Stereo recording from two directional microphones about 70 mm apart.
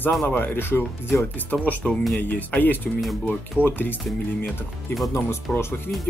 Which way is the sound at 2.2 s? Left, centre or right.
Left.